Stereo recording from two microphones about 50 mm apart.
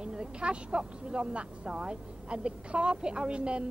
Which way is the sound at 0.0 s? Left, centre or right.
Centre.